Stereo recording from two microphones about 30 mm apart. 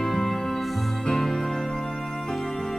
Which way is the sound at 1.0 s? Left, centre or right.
Centre.